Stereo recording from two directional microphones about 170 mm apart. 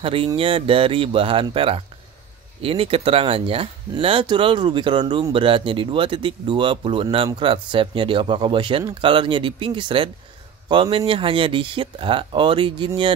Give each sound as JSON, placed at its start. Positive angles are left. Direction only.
{"t": 0.0, "sound": "speech", "side_deg": -35}